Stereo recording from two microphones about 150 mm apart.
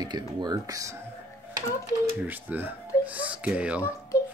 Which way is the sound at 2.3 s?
10° right (ahead or behind).